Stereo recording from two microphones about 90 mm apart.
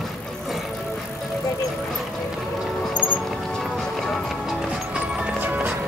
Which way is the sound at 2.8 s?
10° right (ahead or behind).